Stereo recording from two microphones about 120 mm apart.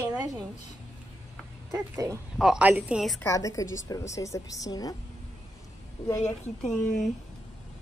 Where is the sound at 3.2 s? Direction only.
25° left (ahead or behind).